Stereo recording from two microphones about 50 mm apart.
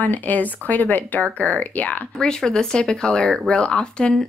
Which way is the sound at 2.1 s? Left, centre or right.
Centre.